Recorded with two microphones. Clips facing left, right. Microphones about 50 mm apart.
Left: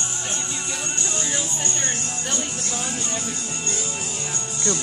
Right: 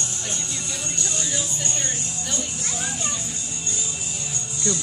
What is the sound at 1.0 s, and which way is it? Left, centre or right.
Music, left.